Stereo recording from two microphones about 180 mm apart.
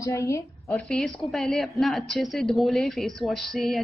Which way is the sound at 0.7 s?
5° left (ahead or behind).